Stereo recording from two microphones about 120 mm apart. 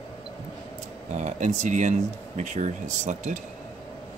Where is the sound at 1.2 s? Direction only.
85° right.